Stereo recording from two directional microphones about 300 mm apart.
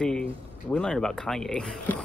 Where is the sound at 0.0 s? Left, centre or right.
Centre.